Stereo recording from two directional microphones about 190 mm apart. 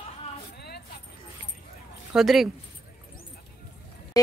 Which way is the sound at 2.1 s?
Centre (ahead or behind).